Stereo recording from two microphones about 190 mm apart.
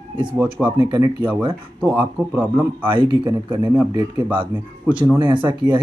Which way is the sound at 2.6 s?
25° right (ahead or behind).